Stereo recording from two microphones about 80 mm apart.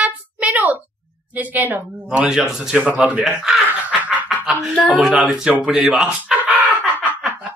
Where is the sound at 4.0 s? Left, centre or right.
Centre.